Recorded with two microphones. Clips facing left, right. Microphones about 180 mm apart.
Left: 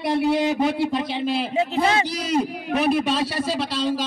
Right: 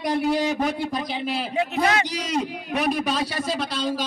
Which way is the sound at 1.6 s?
25° left (ahead or behind).